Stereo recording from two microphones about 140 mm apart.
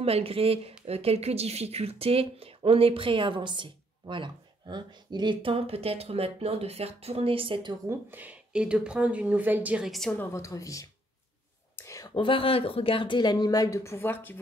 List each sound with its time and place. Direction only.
0.0 s speech: 45° right (ahead or behind)
7.8 s speech: 15° right (ahead or behind)
9.8 s a woman's voice: centre (ahead or behind)
10.1 s speech: 20° left (ahead or behind)